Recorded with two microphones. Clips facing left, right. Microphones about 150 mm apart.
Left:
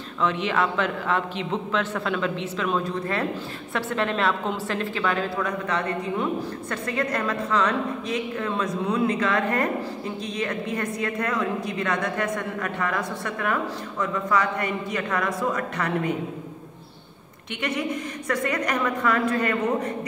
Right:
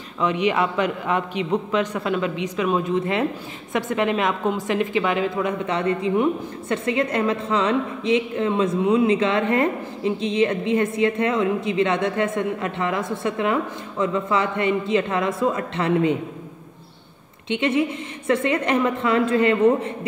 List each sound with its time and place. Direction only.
0.2 s a man's voice: 10° right (ahead or behind)
17.5 s a woman's voice: 25° right (ahead or behind)